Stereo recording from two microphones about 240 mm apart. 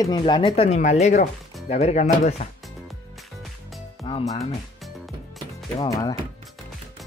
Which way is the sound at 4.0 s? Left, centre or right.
Centre.